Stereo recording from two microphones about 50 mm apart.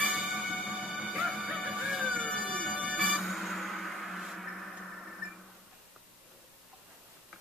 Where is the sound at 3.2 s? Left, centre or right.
Centre.